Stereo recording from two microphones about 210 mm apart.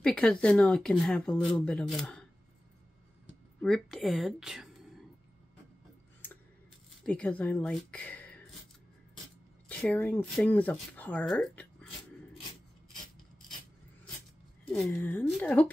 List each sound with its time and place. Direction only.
0.0 s speech: 5° left (ahead or behind)
3.6 s speech: centre (ahead or behind)
7.0 s speech: 5° left (ahead or behind)
9.7 s speech: 5° left (ahead or behind)
14.7 s speech: 5° left (ahead or behind)